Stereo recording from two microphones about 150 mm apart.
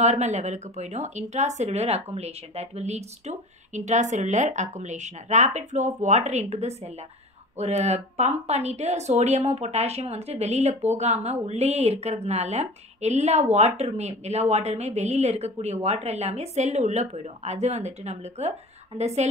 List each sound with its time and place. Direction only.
0.0 s speech: 50° right (ahead or behind)